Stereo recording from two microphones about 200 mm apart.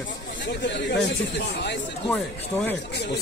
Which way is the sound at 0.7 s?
60° left (ahead or behind).